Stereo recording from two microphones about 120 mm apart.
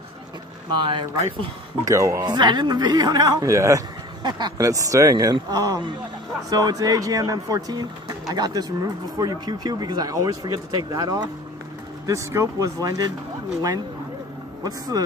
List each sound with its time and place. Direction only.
0.7 s speech: 40° right (ahead or behind)
1.9 s speech: 25° right (ahead or behind)
2.2 s speech: 35° right (ahead or behind)
4.2 s speech: 40° right (ahead or behind)
14.6 s speech: 30° right (ahead or behind)